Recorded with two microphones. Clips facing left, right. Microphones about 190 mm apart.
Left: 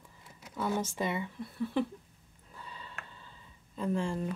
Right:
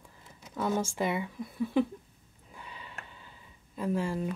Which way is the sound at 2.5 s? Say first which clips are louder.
Right 1 dB; 15° right (ahead or behind).